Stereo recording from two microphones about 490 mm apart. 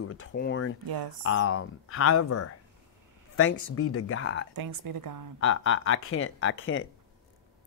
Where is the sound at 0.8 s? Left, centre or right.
Right.